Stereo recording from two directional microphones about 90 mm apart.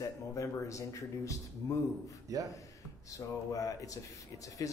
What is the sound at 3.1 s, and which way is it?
Speech, 40° left (ahead or behind).